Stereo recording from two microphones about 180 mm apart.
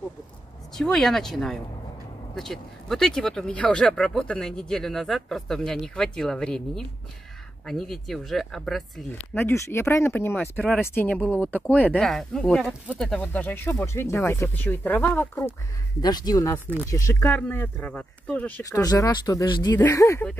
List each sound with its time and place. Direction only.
0.7 s speech: 5° left (ahead or behind)
16.0 s speech: 25° left (ahead or behind)
18.6 s speech: 20° left (ahead or behind)